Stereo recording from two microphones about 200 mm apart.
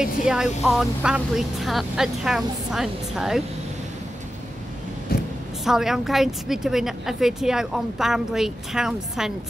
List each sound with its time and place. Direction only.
0.0 s a woman's voice: 5° right (ahead or behind)
5.7 s a woman's voice: centre (ahead or behind)